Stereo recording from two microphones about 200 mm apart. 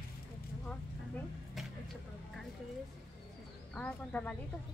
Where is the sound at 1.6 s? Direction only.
Centre (ahead or behind).